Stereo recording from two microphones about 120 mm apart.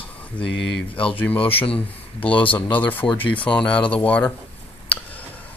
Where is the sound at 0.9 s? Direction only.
45° left (ahead or behind).